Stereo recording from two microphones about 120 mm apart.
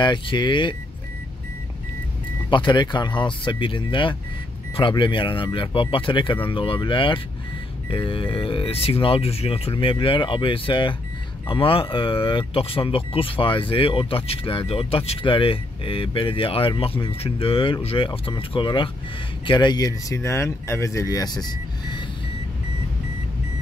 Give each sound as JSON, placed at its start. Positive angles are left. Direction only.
{"t": 0.0, "sound": "speech", "side_deg": 40}
{"t": 2.5, "sound": "speech", "side_deg": 40}